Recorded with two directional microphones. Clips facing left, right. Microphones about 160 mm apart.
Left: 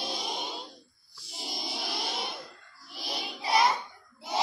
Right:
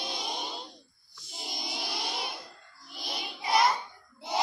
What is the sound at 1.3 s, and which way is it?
Choir, centre (ahead or behind).